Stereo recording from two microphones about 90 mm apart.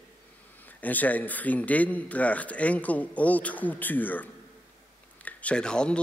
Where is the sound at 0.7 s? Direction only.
20° left (ahead or behind).